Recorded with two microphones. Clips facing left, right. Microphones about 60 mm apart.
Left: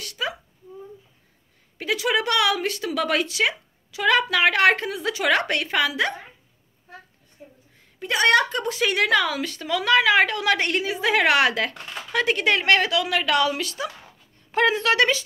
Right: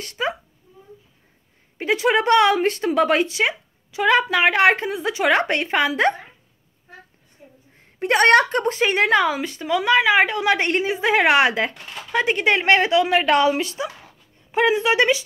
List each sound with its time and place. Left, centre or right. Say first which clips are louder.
0.0 s whimper: right 4 dB; right
1.8 s a woman's voice: right 4 dB; right
8.0 s a woman's voice: right 4 dB; right; by 15.2 s centre